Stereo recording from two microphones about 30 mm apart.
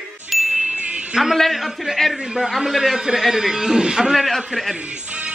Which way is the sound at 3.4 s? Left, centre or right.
Centre.